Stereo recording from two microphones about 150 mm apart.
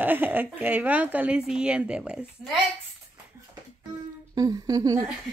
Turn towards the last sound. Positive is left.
turn(degrees=-25)  # may be behind; listen again after turning